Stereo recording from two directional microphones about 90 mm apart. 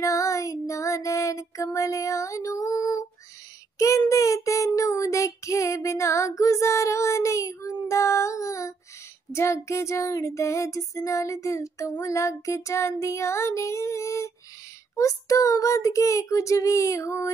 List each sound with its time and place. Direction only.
0.0 s music: 35° left (ahead or behind)
3.7 s child singing: 35° left (ahead or behind)